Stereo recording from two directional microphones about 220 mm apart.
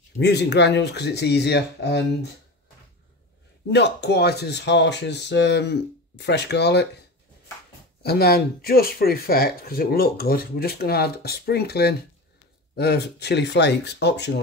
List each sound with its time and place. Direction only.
0.2 s speech: 50° left (ahead or behind)
3.7 s speech: 50° left (ahead or behind)
8.0 s speech: 45° left (ahead or behind)